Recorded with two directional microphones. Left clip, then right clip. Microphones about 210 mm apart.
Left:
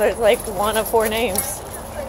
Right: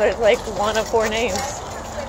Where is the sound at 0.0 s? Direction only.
15° left (ahead or behind).